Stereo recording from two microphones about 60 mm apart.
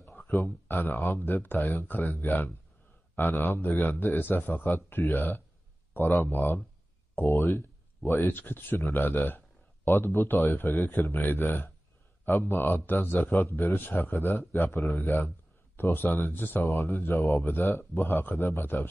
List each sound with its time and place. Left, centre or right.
0.1 s speech: left